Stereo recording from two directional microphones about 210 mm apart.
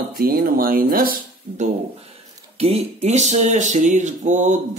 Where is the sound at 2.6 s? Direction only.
30° right (ahead or behind).